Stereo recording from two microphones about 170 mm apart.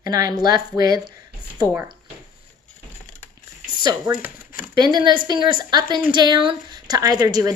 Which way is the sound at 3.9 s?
25° right (ahead or behind).